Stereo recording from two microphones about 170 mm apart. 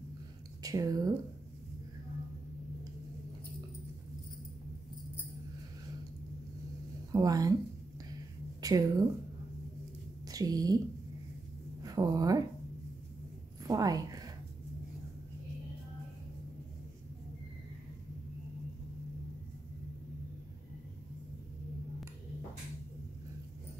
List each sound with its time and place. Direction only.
0.6 s speech: 20° right (ahead or behind)
7.1 s speech: 20° right (ahead or behind)
8.5 s speech: 20° right (ahead or behind)
10.2 s a woman's voice: 20° right (ahead or behind)
11.8 s a sound: 20° right (ahead or behind)
13.7 s a sound: 20° right (ahead or behind)